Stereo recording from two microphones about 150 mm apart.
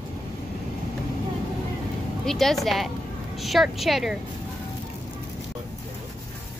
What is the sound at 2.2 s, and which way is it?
A woman's voice, centre (ahead or behind).